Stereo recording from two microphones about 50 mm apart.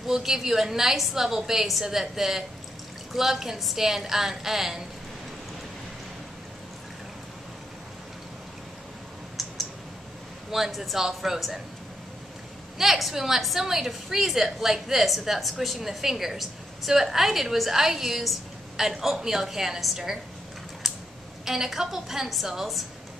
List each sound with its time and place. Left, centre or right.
0.0 s a woman's voice: centre
9.4 s mouse: centre
10.5 s a woman's voice: centre
12.7 s a woman's voice: centre
21.5 s a woman's voice: centre